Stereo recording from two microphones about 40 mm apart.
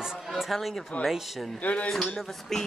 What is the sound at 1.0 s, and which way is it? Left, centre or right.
Speech, left.